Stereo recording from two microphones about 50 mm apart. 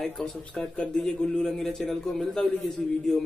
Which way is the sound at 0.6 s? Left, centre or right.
Centre.